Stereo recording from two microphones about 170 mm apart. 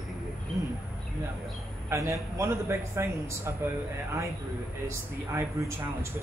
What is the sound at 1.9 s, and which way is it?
Speech, 20° right (ahead or behind).